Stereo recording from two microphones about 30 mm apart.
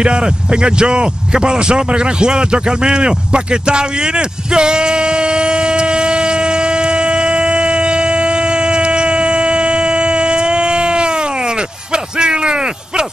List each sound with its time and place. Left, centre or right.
0.0 s speech: right
4.6 s a sound: right
11.9 s speech: right